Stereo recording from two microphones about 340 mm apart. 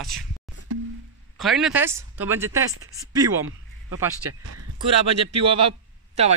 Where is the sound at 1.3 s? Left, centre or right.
Centre.